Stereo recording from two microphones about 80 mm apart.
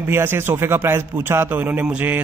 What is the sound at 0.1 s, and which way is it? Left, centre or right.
A man's voice, right.